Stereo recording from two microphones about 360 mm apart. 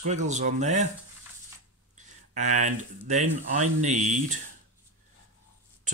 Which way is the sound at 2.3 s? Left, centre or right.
Centre.